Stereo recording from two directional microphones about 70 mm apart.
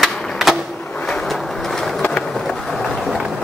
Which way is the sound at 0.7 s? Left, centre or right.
Centre.